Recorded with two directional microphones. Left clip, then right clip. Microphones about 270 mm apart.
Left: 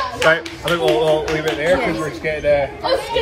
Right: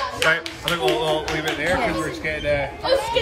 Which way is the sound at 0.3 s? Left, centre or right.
Centre.